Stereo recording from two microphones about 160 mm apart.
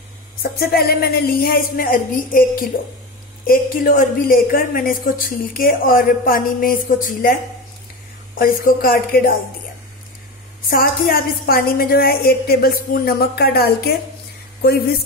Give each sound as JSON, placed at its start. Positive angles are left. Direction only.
{"t": 0.4, "sound": "a woman's voice", "side_deg": 75}
{"t": 8.4, "sound": "speech", "side_deg": 65}
{"t": 10.7, "sound": "a woman's voice", "side_deg": 65}